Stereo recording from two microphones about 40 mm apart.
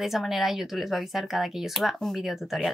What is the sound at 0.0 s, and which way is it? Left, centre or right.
A woman's voice, centre.